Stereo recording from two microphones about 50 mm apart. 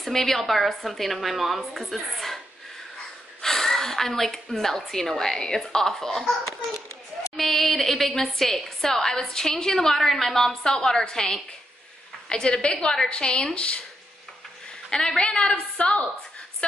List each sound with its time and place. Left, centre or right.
0.0 s a woman's voice: centre
3.4 s a woman's voice: centre
14.9 s a woman's voice: centre